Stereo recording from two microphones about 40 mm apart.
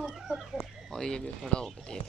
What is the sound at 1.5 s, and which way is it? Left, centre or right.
Speech, left.